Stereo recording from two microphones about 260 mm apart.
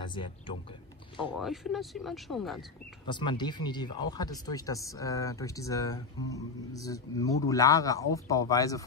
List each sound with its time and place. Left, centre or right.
0.0 s a man's voice: centre
1.3 s speech: centre
3.1 s speech: centre